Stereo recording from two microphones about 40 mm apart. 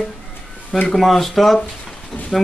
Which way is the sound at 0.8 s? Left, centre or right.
Centre.